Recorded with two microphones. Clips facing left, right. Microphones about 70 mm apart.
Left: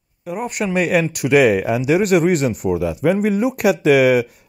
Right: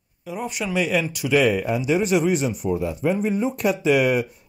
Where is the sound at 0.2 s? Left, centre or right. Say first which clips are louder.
Left 5 dB; left.